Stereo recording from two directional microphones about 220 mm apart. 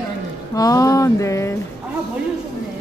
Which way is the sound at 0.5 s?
15° left (ahead or behind).